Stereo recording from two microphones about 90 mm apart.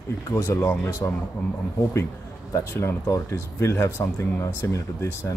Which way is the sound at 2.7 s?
30° left (ahead or behind).